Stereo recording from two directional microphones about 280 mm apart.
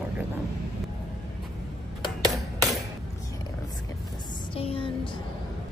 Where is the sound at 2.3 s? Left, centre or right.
Centre.